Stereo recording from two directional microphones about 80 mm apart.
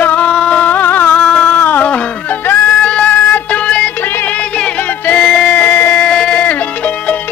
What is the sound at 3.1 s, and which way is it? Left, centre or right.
Music, left.